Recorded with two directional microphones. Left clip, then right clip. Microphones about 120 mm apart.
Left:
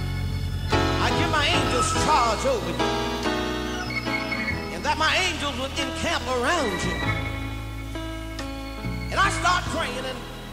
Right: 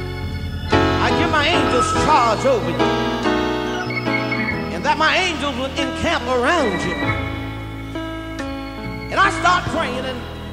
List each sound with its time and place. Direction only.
0.7 s music: 40° left (ahead or behind)
9.1 s music: 40° left (ahead or behind)